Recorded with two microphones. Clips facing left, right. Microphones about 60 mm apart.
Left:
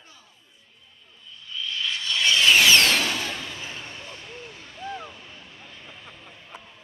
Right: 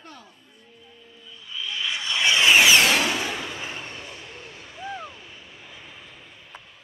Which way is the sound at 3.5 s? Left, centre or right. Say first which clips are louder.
Right 3 dB; right.